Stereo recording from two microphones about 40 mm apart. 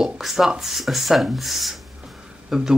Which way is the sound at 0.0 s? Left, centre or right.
Centre.